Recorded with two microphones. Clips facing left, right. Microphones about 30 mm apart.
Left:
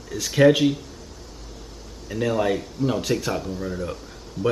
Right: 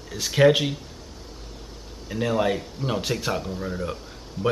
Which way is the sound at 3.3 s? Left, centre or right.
Centre.